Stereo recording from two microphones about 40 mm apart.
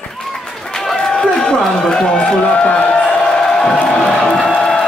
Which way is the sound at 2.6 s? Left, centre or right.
Left.